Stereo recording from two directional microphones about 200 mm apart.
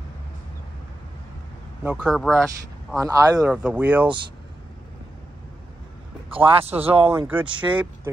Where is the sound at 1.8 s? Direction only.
5° right (ahead or behind).